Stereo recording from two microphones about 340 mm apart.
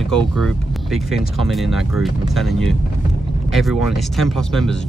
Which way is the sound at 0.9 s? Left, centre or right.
Centre.